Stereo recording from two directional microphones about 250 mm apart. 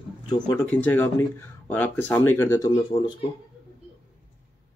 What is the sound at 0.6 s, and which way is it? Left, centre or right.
Speech, centre.